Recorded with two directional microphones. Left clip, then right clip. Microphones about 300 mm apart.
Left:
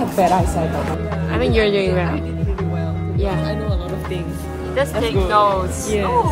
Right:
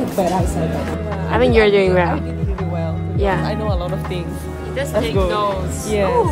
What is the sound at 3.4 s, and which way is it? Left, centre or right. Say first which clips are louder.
Speech: right 2 dB; centre.